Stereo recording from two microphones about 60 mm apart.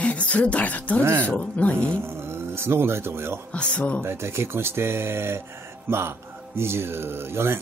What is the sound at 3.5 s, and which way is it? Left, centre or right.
Speech, left.